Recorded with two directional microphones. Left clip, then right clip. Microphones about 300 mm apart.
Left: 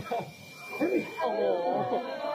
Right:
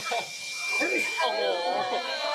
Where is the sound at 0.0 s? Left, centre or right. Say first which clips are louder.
Right 4 dB; centre.